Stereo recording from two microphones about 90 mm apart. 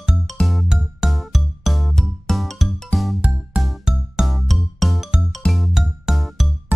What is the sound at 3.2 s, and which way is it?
Music, 15° right (ahead or behind).